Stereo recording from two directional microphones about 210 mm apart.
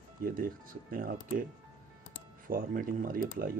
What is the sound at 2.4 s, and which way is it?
Speech, 40° right (ahead or behind).